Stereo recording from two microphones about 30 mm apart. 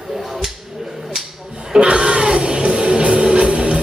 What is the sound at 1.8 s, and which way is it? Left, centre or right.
Music, right.